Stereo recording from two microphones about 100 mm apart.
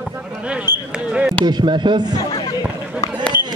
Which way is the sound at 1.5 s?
45° right (ahead or behind).